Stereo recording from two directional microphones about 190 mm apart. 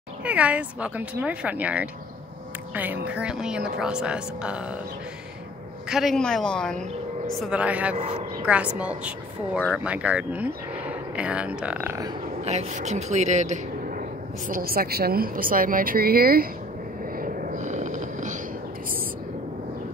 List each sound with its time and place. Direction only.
0.2 s speech: 5° right (ahead or behind)
5.9 s speech: centre (ahead or behind)
7.9 s a man's voice: 35° right (ahead or behind)
8.5 s speech: 5° right (ahead or behind)
12.4 s a woman's voice: 35° right (ahead or behind); by 16.4 s 50° right (ahead or behind)
17.2 s a sound: 45° right (ahead or behind)